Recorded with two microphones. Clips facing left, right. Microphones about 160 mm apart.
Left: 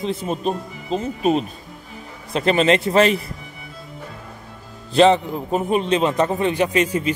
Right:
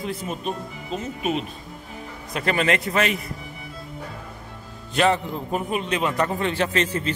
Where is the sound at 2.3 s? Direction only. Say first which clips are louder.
Left 6 dB; 25° left (ahead or behind).